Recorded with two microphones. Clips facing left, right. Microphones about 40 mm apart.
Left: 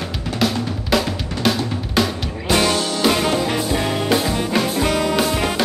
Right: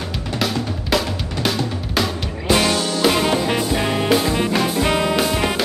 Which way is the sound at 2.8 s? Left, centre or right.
Left.